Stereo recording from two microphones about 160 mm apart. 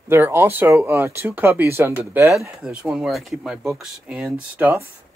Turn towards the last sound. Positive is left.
turn(degrees=-10)  # may be behind; listen again after turning